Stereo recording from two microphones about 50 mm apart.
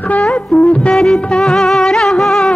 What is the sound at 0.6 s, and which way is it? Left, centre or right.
Music of bollywood, left.